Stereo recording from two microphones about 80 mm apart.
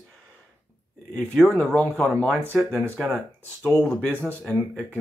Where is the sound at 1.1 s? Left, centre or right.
Centre.